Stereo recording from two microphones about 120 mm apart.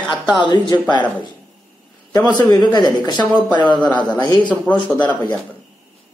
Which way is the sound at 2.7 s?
35° left (ahead or behind).